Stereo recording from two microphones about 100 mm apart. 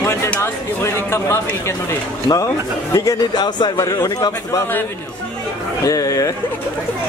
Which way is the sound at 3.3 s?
45° left (ahead or behind).